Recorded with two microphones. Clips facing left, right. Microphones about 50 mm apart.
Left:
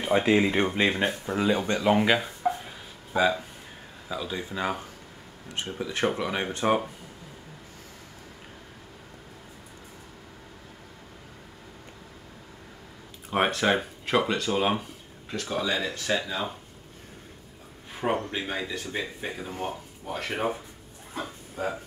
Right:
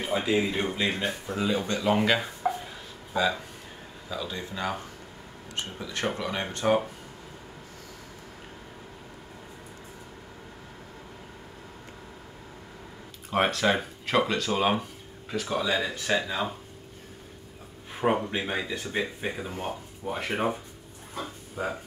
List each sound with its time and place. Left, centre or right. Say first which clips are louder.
0.1 s speech: left 5 dB; left
2.0 s speech: left 1 dB; centre
2.4 s a sound: left 1 dB; centre
3.1 s speech: left 3 dB; centre
6.1 s speech: left 2 dB; centre
13.3 s speech: even; centre
18.1 s speech: right 1 dB; centre
21.6 s speech: left 1 dB; centre